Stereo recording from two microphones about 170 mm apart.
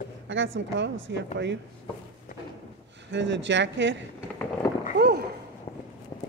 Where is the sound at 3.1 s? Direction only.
90° right.